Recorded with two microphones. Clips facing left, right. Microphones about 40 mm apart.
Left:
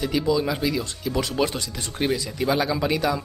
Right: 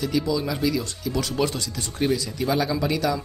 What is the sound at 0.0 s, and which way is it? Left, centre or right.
Speech, left.